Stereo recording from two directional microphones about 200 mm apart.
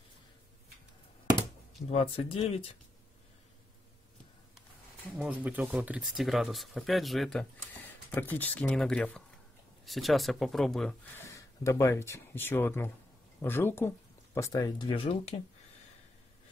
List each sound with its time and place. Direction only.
1.9 s speech: 30° left (ahead or behind)
5.1 s speech: 5° right (ahead or behind)
11.3 s speech: 15° left (ahead or behind)